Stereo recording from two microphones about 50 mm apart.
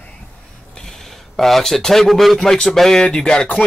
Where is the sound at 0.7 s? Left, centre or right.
Centre.